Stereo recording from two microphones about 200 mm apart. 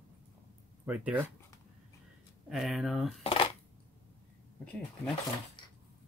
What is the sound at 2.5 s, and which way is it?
Speech, centre (ahead or behind).